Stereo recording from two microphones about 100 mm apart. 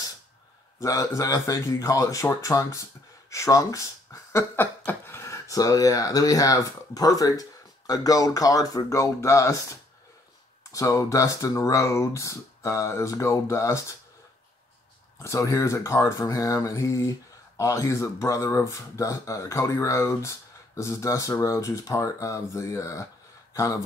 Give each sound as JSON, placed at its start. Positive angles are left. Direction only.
{"t": 0.7, "sound": "speech", "side_deg": 35}
{"t": 15.2, "sound": "speech", "side_deg": 35}